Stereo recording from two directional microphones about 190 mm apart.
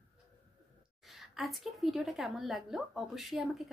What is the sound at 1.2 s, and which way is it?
A woman's voice, centre (ahead or behind).